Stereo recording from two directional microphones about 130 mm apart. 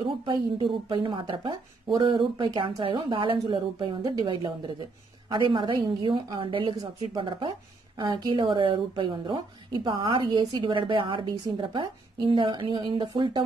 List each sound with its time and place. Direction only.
0.0 s a woman's voice: 40° right (ahead or behind)